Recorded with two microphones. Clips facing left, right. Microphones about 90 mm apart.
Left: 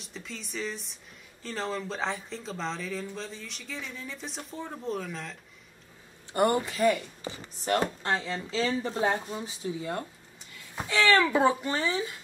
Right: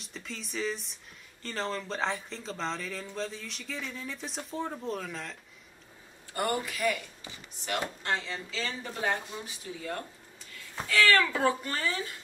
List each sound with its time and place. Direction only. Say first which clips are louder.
0.0 s speech: even; centre (ahead or behind)
6.3 s speech: left 6 dB; 25° left (ahead or behind)